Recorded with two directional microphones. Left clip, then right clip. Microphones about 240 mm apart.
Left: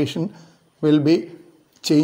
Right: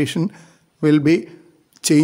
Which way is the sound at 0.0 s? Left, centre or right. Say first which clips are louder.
Right 2 dB; right.